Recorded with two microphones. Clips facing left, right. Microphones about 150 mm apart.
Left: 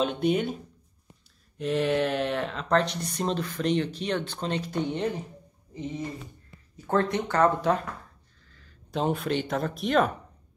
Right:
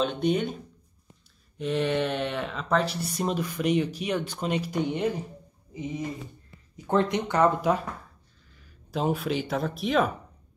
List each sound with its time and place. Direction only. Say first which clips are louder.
0.0 s speech: even; 5° left (ahead or behind)
1.6 s speech: left 1 dB; centre (ahead or behind)